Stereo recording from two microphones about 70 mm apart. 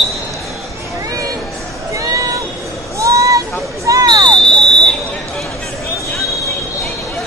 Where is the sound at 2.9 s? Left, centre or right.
Right.